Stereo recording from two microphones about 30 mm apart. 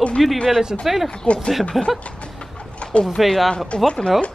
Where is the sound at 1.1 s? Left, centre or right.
Left.